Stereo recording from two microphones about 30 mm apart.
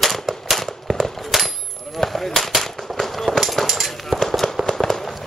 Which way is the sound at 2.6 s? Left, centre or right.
Centre.